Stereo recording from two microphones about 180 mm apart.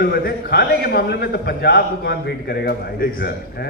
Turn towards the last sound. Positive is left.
turn(degrees=60)  # may be behind; listen again after turning